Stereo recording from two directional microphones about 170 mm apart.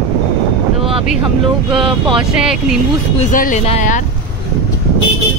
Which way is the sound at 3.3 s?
50° left (ahead or behind).